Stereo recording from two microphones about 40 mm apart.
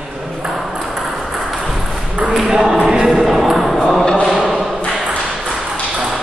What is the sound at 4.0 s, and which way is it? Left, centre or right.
Mantra, centre.